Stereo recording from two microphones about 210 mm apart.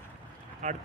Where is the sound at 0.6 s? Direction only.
35° right (ahead or behind).